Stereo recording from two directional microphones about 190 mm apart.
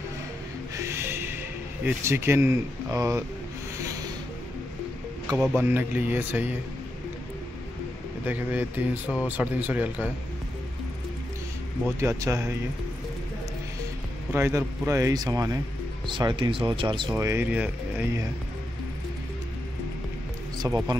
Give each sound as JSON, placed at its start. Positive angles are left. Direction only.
{"t": 0.7, "sound": "a sound", "side_deg": -15}
{"t": 1.9, "sound": "speech", "side_deg": -10}
{"t": 3.7, "sound": "rub", "side_deg": -15}
{"t": 5.6, "sound": "speech", "side_deg": -10}
{"t": 8.3, "sound": "speech", "side_deg": -10}
{"t": 12.0, "sound": "speech", "side_deg": -15}
{"t": 14.3, "sound": "speech", "side_deg": -15}
{"t": 17.1, "sound": "speech", "side_deg": -10}
{"t": 20.5, "sound": "speech", "side_deg": -20}